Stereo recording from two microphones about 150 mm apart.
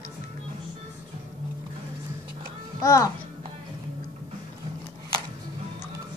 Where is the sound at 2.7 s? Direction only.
20° left (ahead or behind).